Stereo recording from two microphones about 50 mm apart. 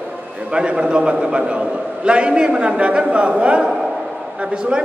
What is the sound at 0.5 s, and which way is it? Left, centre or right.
A man's voice, centre.